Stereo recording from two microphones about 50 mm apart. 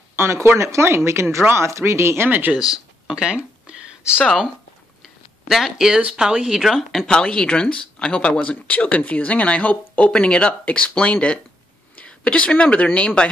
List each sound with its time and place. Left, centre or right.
0.1 s speech: right
1.7 s speech: right
2.2 s speech: right
2.6 s speech: centre
3.6 s a sound: centre
5.9 s speech: right
6.2 s speech: centre
6.6 s speech: centre
7.1 s a woman's voice: centre